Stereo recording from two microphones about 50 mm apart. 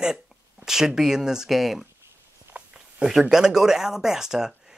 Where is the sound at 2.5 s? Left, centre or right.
Right.